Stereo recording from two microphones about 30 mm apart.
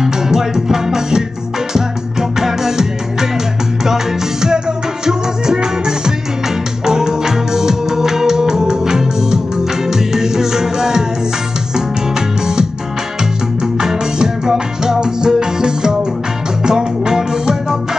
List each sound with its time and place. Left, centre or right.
0.0 s music: centre
13.7 s music: right